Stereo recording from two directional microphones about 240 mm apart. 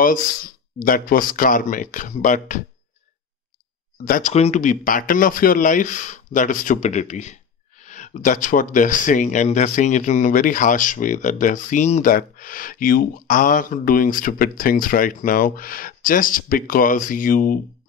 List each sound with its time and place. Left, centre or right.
0.0 s speech: left
4.0 s speech: left